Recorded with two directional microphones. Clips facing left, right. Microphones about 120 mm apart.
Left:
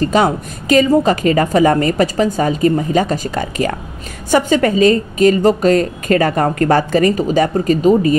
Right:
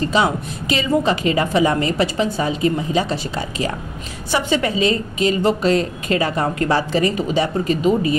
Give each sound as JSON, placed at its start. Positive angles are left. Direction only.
{"t": 0.0, "sound": "a woman's voice", "side_deg": 45}